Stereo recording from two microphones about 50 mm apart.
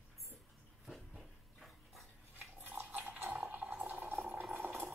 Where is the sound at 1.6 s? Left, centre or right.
Centre.